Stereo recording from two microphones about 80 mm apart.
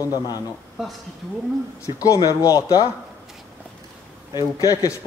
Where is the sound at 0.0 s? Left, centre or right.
Left.